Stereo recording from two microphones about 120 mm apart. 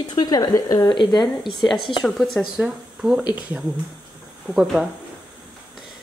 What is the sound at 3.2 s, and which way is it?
Speech, 35° left (ahead or behind).